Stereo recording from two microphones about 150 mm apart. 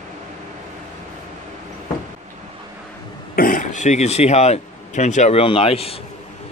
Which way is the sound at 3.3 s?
65° left (ahead or behind).